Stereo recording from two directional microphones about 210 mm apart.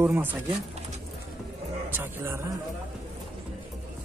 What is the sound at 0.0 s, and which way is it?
Speech, 10° right (ahead or behind).